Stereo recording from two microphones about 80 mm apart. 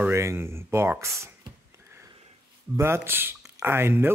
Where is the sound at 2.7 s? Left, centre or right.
Right.